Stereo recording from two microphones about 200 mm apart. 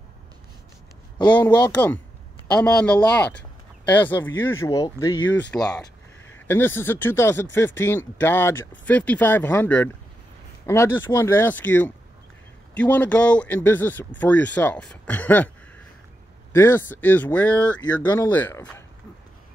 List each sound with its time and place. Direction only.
1.1 s speech: 20° left (ahead or behind)
2.5 s speech: 5° left (ahead or behind)
5.5 s speech: 5° left (ahead or behind)
16.5 s speech: 10° left (ahead or behind)
18.0 s speech: 15° left (ahead or behind)